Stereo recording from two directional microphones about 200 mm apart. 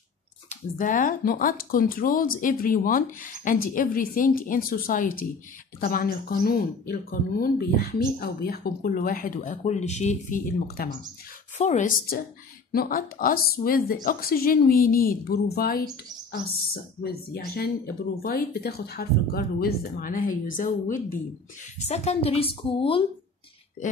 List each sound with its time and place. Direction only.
0.5 s speech: 40° left (ahead or behind)
10.8 s a woman's voice: 45° left (ahead or behind); by 23.0 s 25° left (ahead or behind)